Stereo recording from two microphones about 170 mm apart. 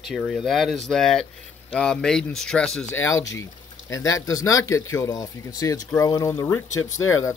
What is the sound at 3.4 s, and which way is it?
Speech, 20° left (ahead or behind).